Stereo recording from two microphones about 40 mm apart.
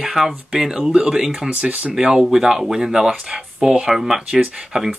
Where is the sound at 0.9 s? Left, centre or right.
Right.